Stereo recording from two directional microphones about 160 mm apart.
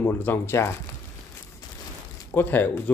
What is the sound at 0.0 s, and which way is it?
Speech, 15° left (ahead or behind).